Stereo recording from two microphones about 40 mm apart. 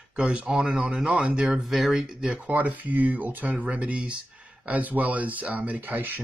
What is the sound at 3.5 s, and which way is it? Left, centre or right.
Speech, right.